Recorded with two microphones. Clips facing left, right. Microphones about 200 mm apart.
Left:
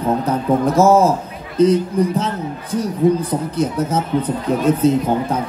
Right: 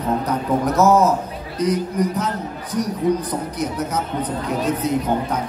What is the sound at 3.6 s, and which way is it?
Speech, 30° left (ahead or behind).